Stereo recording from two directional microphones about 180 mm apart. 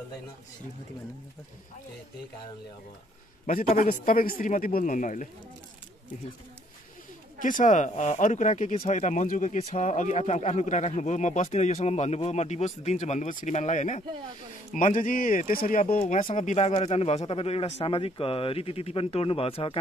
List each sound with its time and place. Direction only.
3.6 s speech: 35° left (ahead or behind)
4.1 s speech: 50° left (ahead or behind)
7.3 s speech: 45° left (ahead or behind)